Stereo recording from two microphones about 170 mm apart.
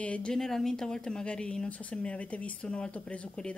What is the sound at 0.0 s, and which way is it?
Speech, 5° left (ahead or behind).